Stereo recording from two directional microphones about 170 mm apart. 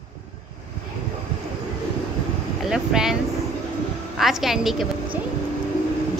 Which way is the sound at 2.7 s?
5° right (ahead or behind).